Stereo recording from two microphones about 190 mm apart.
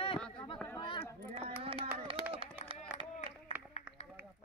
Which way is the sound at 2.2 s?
30° left (ahead or behind).